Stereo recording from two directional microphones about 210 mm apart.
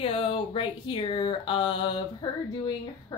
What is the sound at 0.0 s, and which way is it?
Speech, 25° left (ahead or behind).